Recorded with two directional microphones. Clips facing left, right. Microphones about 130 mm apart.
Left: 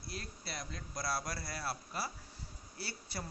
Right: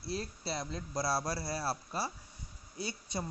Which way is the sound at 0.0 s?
30° right (ahead or behind).